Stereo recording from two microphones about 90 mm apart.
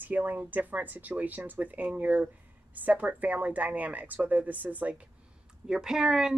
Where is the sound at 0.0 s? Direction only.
20° right (ahead or behind).